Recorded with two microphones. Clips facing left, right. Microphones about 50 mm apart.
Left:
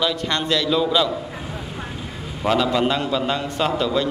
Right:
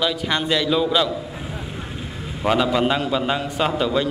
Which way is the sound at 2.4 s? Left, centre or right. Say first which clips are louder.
Even; centre.